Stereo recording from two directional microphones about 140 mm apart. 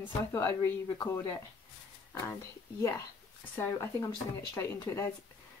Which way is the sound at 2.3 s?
20° left (ahead or behind).